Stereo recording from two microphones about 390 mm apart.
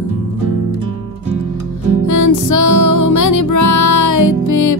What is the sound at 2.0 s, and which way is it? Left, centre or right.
Music, left.